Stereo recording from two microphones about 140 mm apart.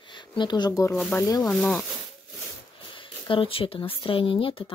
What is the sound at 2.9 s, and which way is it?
Speech, 35° left (ahead or behind).